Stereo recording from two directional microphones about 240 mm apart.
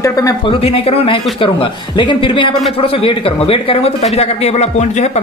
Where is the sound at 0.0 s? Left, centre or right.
Centre.